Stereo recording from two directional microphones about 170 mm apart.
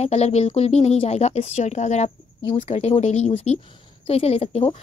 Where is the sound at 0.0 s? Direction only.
40° left (ahead or behind).